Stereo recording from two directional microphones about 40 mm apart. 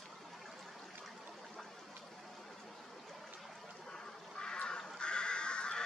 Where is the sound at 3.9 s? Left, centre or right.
Left.